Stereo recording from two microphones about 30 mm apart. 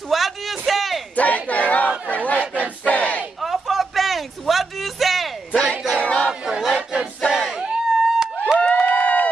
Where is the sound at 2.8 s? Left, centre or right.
Left.